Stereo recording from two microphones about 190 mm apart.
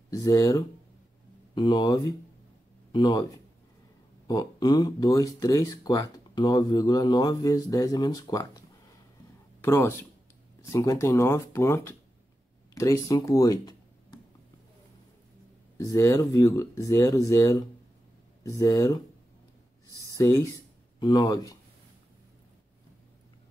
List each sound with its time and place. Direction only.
0.1 s speech: 15° left (ahead or behind)
4.3 s speech: 20° left (ahead or behind)
15.8 s speech: 15° left (ahead or behind)
19.9 s a sound: 15° right (ahead or behind)
20.2 s speech: 15° left (ahead or behind)